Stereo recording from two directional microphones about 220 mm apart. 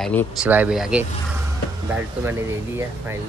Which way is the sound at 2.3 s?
10° right (ahead or behind).